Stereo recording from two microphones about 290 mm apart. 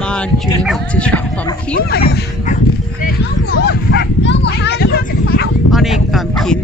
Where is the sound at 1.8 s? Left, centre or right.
Left.